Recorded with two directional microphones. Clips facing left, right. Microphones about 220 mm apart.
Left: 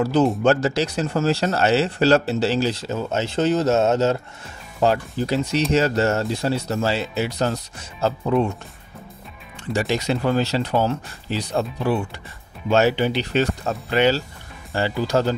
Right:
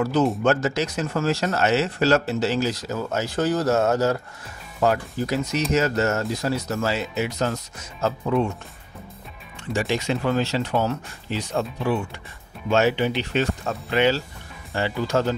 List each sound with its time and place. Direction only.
0.0 s speech: 30° left (ahead or behind)
9.7 s speech: 40° left (ahead or behind)